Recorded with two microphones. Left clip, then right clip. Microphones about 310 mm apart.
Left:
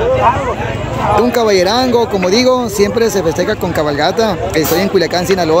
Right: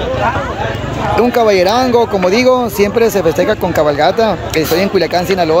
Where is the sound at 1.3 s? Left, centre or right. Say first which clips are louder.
Right 1 dB; centre.